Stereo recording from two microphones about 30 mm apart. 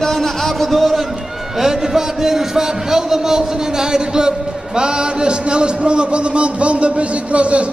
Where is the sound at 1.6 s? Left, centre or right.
Centre.